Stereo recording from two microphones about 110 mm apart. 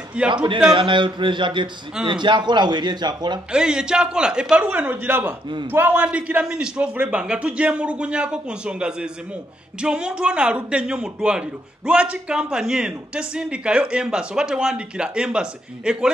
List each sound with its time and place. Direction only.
0.3 s a man's voice: 50° right (ahead or behind)
3.5 s a woman's voice: 5° right (ahead or behind)